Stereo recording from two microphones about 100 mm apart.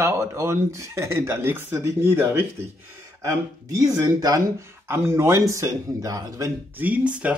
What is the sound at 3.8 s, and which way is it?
Speech, 40° right (ahead or behind).